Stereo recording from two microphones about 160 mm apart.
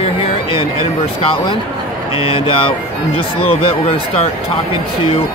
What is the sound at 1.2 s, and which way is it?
Speech, 30° left (ahead or behind).